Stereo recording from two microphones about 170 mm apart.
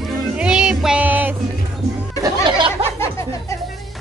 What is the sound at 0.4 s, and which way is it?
Music, 5° right (ahead or behind).